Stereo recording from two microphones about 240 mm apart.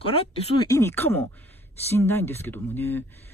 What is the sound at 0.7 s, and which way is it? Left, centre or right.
Speech, centre.